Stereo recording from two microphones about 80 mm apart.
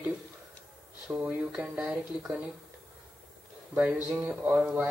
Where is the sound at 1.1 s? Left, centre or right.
Right.